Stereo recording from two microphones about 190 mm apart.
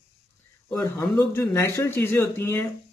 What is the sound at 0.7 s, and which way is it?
Speech, 15° left (ahead or behind).